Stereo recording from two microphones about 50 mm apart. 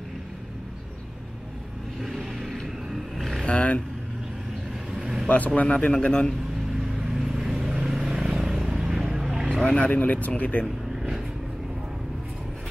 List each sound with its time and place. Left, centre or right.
2.0 s vehicle: centre
3.4 s speech: left
5.6 s a man's voice: left
6.7 s vehicle: centre
9.5 s speech: left
11.0 s vehicle: centre